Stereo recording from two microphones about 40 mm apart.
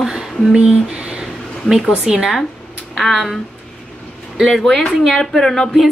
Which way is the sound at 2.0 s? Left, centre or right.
Centre.